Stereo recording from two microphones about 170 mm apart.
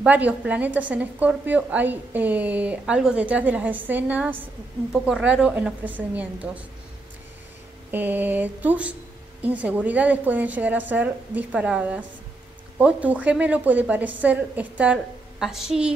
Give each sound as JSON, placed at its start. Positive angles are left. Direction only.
{"t": 0.0, "sound": "a woman's voice", "side_deg": -10}
{"t": 7.9, "sound": "a woman's voice", "side_deg": -10}